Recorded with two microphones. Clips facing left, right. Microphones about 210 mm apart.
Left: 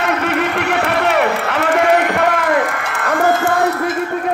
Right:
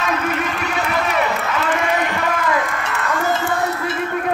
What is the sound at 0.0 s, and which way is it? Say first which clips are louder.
Run: left 4 dB; 70° left (ahead or behind).